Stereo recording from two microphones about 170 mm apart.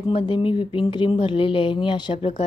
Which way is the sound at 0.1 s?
30° left (ahead or behind).